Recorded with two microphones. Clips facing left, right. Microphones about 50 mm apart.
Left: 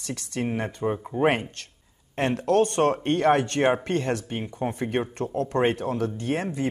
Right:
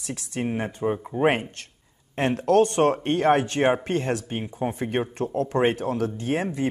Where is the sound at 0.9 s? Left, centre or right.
Centre.